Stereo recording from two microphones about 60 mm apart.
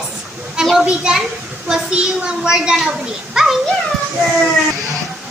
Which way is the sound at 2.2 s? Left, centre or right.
Centre.